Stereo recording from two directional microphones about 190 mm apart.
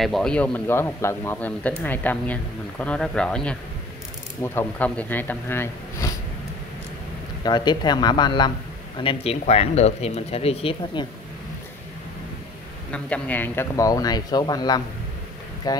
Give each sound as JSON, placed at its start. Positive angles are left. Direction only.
{"t": 0.0, "sound": "speech", "side_deg": 0}
{"t": 7.4, "sound": "speech", "side_deg": 20}
{"t": 12.9, "sound": "speech", "side_deg": 5}